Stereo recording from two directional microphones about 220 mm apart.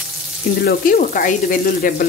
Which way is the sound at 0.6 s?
40° left (ahead or behind).